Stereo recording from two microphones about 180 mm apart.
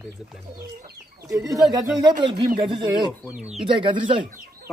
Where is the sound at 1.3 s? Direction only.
20° right (ahead or behind).